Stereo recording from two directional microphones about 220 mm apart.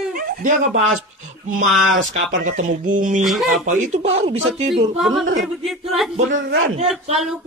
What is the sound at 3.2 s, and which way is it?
Speech, centre (ahead or behind).